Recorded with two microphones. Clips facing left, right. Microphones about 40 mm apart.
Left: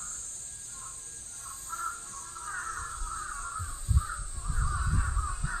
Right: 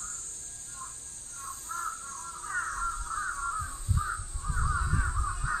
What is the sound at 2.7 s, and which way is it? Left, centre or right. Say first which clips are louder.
Crow: right 6 dB; centre.